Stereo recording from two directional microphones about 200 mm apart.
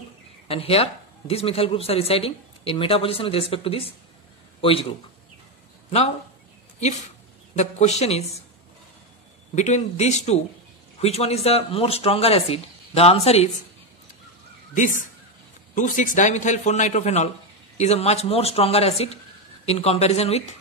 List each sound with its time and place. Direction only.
0.5 s a man's voice: 30° left (ahead or behind)
7.5 s speech: 35° left (ahead or behind)
9.6 s speech: 35° left (ahead or behind)
14.7 s speech: 40° left (ahead or behind)